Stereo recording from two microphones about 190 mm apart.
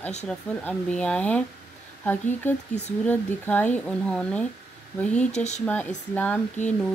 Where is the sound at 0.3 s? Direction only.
5° left (ahead or behind).